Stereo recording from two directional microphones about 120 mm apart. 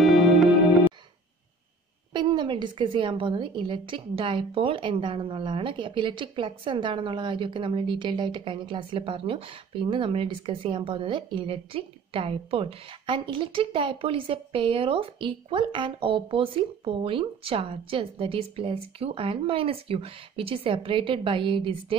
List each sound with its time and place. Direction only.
0.0 s music: centre (ahead or behind)
2.1 s a woman's voice: 40° right (ahead or behind)